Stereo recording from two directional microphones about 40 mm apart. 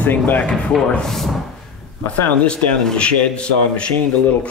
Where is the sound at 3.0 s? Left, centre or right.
Left.